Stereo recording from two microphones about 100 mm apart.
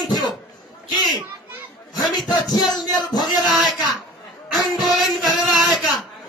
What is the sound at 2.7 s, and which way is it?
Speech, 45° left (ahead or behind).